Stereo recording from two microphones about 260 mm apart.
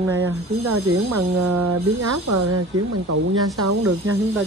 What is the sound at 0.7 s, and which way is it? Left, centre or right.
Speech, right.